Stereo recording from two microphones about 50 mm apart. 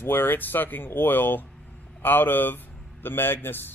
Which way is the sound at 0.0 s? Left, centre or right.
Left.